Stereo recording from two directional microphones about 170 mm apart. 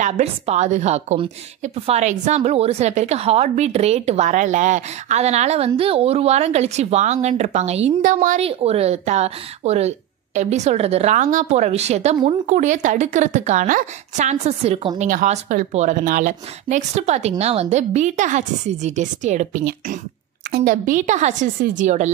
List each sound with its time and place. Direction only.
0.0 s a woman's voice: 40° right (ahead or behind)
8.4 s a woman's voice: 35° right (ahead or behind)